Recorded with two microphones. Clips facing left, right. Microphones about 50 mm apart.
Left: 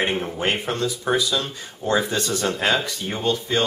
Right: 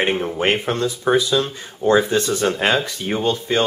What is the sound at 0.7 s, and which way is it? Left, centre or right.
Speech, right.